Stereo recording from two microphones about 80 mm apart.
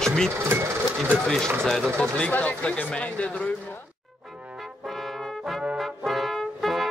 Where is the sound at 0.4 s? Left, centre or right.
Right.